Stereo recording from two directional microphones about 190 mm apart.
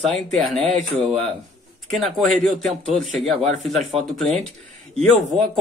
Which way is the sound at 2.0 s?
Centre (ahead or behind).